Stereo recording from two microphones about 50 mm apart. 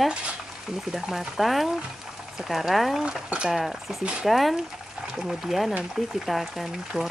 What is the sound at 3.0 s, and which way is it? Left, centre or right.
Speech, centre.